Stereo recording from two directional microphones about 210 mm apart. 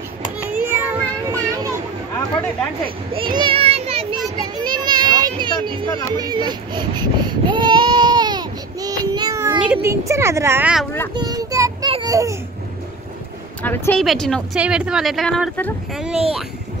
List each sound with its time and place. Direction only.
0.4 s child singing: 10° right (ahead or behind)
3.2 s a sound: 25° right (ahead or behind)
6.1 s speech: 20° right (ahead or behind)
11.1 s child singing: 20° right (ahead or behind)
11.9 s babbling: 20° right (ahead or behind)
13.6 s speech: 10° left (ahead or behind)